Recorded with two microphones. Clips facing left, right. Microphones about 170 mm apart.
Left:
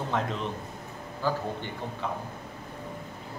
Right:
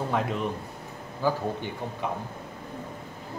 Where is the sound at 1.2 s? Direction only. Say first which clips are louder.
Right 3 dB; 15° right (ahead or behind).